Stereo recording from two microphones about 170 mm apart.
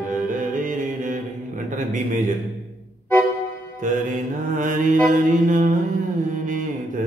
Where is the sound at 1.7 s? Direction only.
50° right (ahead or behind).